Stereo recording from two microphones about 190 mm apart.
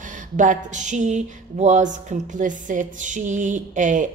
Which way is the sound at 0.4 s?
40° right (ahead or behind).